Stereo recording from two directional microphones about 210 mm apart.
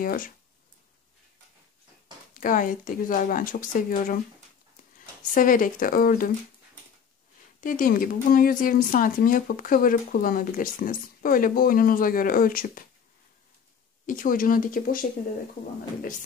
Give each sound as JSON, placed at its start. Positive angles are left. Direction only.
{"t": 0.0, "sound": "speech", "side_deg": 40}
{"t": 2.3, "sound": "speech", "side_deg": 40}
{"t": 5.3, "sound": "speech", "side_deg": 40}
{"t": 7.6, "sound": "speech", "side_deg": 40}
{"t": 14.0, "sound": "speech", "side_deg": 40}